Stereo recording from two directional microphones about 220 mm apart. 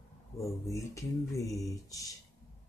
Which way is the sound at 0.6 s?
15° left (ahead or behind).